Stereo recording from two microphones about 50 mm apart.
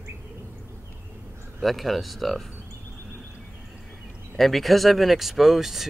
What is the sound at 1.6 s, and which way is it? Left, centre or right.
Speech, centre.